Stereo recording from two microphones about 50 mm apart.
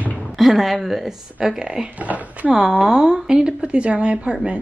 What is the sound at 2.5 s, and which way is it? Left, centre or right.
Speech, centre.